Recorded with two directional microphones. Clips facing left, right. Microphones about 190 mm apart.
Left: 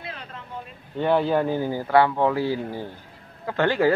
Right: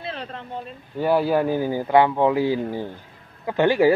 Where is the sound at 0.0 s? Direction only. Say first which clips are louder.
Right 6 dB; 30° right (ahead or behind).